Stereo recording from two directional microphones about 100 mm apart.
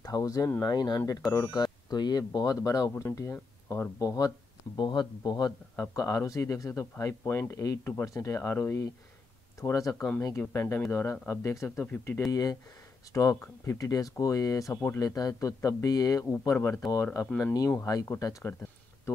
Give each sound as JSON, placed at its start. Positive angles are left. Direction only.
{"t": 0.0, "sound": "speech", "side_deg": 35}
{"t": 2.9, "sound": "speech", "side_deg": 25}
{"t": 4.7, "sound": "speech", "side_deg": 45}
{"t": 11.8, "sound": "speech", "side_deg": 15}
{"t": 12.3, "sound": "speech", "side_deg": 40}
{"t": 15.0, "sound": "speech", "side_deg": 40}
{"t": 16.5, "sound": "speech", "side_deg": 25}
{"t": 18.4, "sound": "a sound", "side_deg": 25}